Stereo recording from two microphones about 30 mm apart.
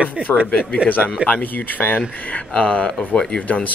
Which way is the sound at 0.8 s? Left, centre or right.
Left.